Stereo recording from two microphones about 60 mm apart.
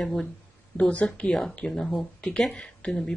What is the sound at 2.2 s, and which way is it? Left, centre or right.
Speech, centre.